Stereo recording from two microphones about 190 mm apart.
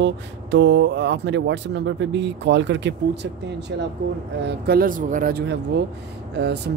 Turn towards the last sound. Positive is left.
turn(degrees=-60)  # may be behind; listen again after turning